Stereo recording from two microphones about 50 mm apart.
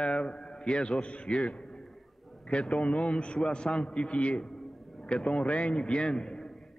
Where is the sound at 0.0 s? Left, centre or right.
Left.